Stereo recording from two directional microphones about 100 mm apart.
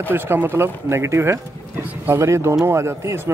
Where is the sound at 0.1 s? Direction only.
20° right (ahead or behind).